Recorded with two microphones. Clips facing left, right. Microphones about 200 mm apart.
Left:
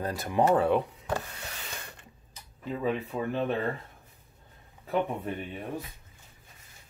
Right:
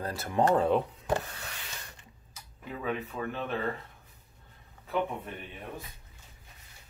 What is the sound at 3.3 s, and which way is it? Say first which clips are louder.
Speech: left 8 dB; 35° left (ahead or behind).